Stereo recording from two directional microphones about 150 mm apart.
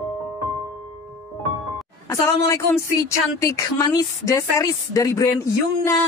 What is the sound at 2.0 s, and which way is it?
Speech, 20° left (ahead or behind).